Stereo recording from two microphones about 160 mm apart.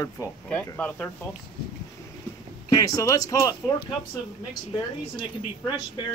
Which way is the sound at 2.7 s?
20° left (ahead or behind).